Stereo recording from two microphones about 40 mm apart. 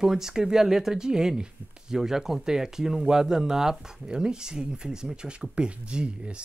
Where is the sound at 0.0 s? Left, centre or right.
Centre.